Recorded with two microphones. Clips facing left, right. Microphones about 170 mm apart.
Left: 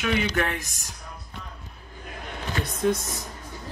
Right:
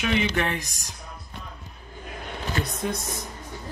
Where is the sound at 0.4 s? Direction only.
Centre (ahead or behind).